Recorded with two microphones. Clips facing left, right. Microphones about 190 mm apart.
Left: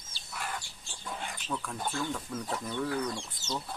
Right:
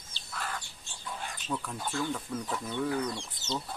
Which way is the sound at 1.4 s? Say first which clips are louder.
Right 1 dB; 5° right (ahead or behind).